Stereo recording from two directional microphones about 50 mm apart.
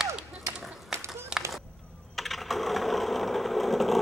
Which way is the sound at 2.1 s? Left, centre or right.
Centre.